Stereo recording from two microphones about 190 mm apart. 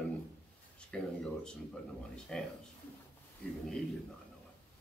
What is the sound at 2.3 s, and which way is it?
Speech, 5° left (ahead or behind).